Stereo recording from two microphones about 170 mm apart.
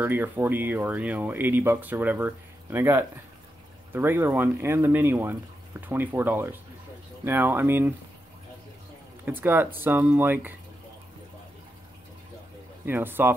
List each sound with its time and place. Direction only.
0.0 s speech: 10° right (ahead or behind)
9.2 s speech: 10° right (ahead or behind)
12.8 s speech: 10° right (ahead or behind)